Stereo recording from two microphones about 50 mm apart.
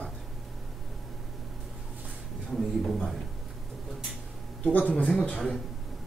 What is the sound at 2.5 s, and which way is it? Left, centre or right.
Speech, centre.